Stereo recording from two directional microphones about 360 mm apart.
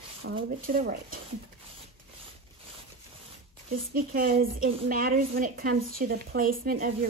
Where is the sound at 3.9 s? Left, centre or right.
Right.